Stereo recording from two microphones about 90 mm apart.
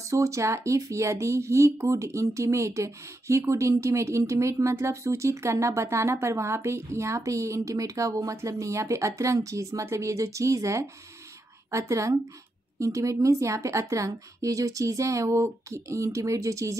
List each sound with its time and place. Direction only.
0.0 s speech: 35° right (ahead or behind)